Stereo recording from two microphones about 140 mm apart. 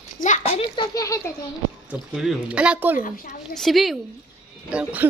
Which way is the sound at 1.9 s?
5° right (ahead or behind).